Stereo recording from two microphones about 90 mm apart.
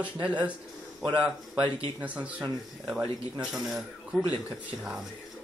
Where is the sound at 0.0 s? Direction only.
15° right (ahead or behind).